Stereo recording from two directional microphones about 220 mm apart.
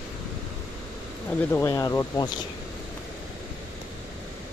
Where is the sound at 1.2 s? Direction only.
10° left (ahead or behind).